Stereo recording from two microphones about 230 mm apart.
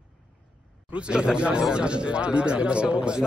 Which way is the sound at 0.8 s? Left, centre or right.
Centre.